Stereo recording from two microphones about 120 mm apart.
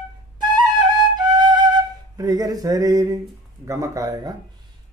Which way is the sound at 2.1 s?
30° right (ahead or behind).